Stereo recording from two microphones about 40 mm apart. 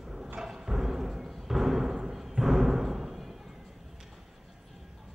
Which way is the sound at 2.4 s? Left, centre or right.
Centre.